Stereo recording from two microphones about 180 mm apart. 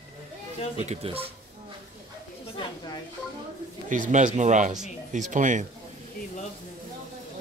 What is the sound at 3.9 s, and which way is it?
Speech, 45° right (ahead or behind).